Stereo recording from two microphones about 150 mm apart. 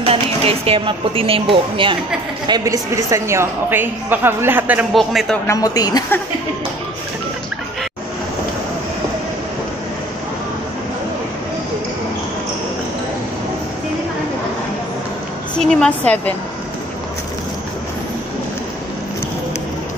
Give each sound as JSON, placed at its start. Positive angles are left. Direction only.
{"t": 0.0, "sound": "a man's voice", "side_deg": -40}
{"t": 4.9, "sound": "a man's voice", "side_deg": 0}
{"t": 5.5, "sound": "a woman's voice", "side_deg": 25}
{"t": 15.5, "sound": "a woman's voice", "side_deg": 5}